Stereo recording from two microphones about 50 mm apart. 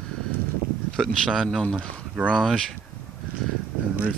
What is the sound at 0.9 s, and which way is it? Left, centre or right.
Speech, centre.